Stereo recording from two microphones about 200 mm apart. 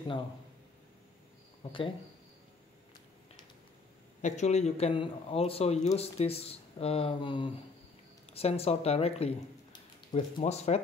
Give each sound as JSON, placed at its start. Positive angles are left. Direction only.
{"t": 1.6, "sound": "speech", "side_deg": 25}
{"t": 4.2, "sound": "speech", "side_deg": 35}